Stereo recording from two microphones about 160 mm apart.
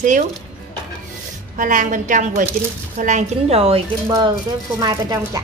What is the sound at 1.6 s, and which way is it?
A woman's voice, 55° right (ahead or behind).